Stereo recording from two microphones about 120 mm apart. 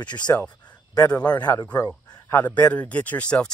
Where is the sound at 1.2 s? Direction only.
15° left (ahead or behind).